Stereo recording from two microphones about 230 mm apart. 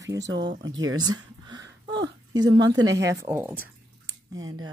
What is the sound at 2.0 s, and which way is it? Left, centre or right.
Speech, centre.